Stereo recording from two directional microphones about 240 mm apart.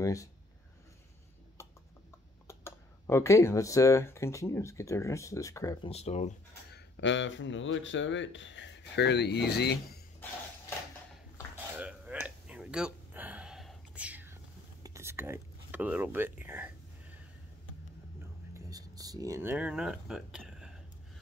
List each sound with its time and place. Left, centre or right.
0.0 s speech: centre
1.6 s a sound: centre
2.4 s speech: centre
5.9 s speech: left
6.7 s speech: left
11.7 s a sound: centre
18.7 s speech: centre